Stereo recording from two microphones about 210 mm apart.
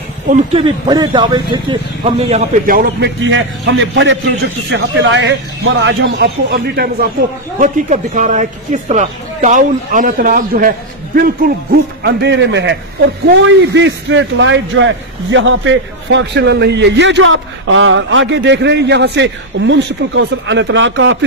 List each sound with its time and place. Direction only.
0.3 s speech: 25° right (ahead or behind)
2.6 s speech: 40° right (ahead or behind)
3.3 s a man's voice: 65° right (ahead or behind)
7.5 s a man's voice: 35° right (ahead or behind); by 21.2 s 60° right (ahead or behind)